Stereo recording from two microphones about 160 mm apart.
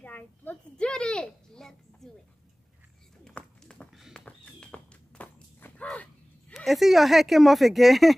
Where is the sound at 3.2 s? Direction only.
5° left (ahead or behind).